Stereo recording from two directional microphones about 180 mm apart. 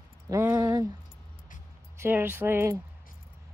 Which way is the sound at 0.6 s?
25° right (ahead or behind).